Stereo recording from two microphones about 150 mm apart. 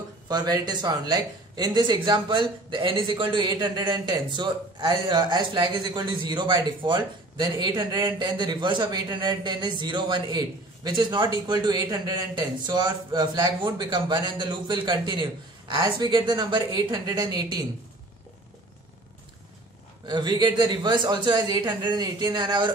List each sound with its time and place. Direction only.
0.3 s a man's voice: 25° right (ahead or behind)
20.1 s a man's voice: 30° right (ahead or behind)